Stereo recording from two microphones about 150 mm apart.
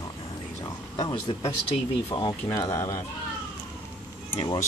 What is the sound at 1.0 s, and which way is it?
Speech, 25° left (ahead or behind).